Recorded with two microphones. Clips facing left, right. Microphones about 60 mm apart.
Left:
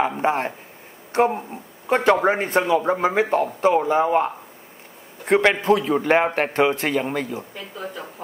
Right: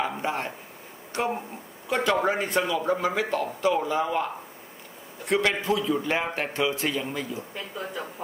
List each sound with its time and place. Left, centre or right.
0.2 s a man's voice: left
7.5 s speech: centre